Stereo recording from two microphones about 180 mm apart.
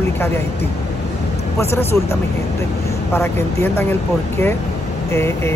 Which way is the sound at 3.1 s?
15° left (ahead or behind).